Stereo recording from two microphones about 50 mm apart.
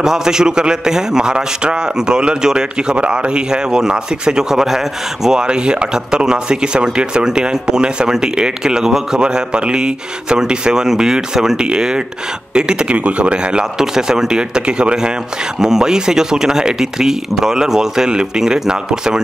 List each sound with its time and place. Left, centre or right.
0.0 s a man's voice: centre